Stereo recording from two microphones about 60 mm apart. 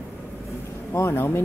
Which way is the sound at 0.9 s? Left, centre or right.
Left.